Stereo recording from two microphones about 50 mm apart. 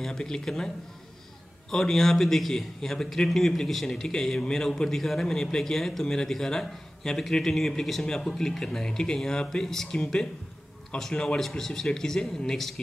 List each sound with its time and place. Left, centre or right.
0.0 s a man's voice: centre
1.7 s a man's voice: centre
11.1 s a man's voice: centre
11.4 s a man's voice: centre